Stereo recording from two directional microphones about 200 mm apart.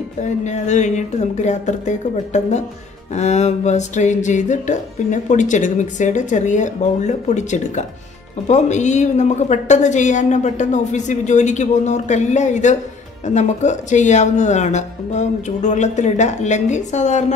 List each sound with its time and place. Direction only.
0.2 s music: 35° left (ahead or behind)